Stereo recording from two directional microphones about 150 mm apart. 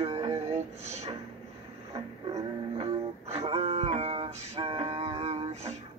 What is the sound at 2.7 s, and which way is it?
Music, 40° right (ahead or behind).